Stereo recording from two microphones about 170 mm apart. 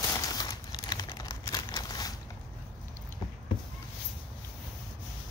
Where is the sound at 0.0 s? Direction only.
20° left (ahead or behind).